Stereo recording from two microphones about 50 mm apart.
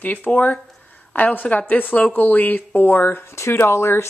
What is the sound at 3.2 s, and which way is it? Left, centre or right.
Speech, left.